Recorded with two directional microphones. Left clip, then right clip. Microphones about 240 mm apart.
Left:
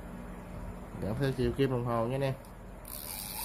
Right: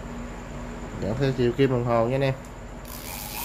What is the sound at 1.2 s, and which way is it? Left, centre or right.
A man's voice, centre.